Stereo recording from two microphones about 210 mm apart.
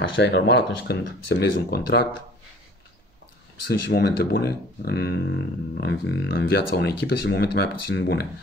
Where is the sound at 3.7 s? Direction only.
50° left (ahead or behind).